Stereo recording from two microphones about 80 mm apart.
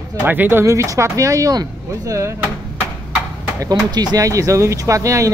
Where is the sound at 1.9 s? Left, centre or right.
Right.